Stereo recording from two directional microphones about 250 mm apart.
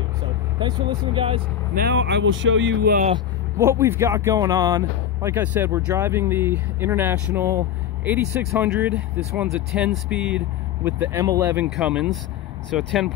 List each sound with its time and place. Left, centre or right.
0.6 s speech: centre
1.8 s speech: right
2.9 s speech: right
3.5 s speech: centre